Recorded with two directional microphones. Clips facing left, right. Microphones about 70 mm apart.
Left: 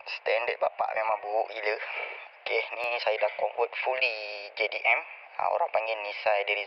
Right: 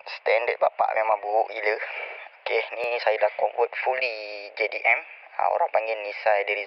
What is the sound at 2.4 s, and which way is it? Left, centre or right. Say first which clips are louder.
Speech: right 4 dB; right.